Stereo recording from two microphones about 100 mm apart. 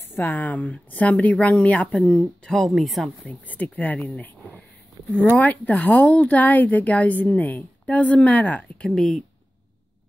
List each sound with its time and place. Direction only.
0.0 s speech: 20° left (ahead or behind); by 3.1 s centre (ahead or behind)
3.3 s speech: 15° left (ahead or behind)
4.2 s a sound: 15° left (ahead or behind)
5.4 s speech: 15° left (ahead or behind)